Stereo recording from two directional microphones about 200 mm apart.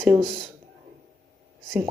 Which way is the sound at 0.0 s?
15° right (ahead or behind).